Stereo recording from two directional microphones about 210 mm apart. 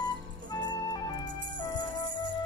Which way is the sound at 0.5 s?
20° left (ahead or behind).